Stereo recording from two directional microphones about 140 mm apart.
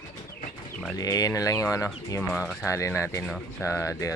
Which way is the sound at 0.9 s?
25° left (ahead or behind).